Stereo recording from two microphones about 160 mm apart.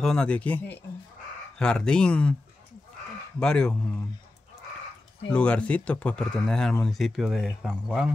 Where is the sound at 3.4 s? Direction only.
5° left (ahead or behind).